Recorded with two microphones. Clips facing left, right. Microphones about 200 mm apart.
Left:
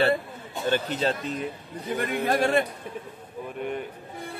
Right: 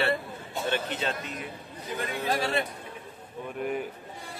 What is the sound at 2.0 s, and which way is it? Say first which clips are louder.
Speech: left 5 dB; 55° left (ahead or behind).